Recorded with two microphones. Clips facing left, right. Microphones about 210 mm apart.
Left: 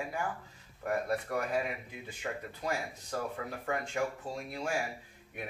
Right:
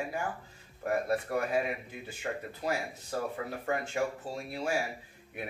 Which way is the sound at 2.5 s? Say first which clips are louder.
Right 3 dB; 5° right (ahead or behind).